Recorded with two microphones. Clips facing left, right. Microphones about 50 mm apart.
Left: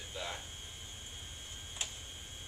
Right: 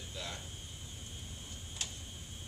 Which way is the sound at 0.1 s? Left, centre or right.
Centre.